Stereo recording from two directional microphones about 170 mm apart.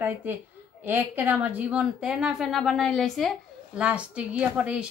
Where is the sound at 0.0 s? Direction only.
10° right (ahead or behind).